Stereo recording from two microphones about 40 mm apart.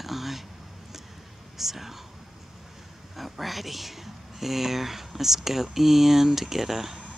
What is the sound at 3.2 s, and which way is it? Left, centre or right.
Speech, centre.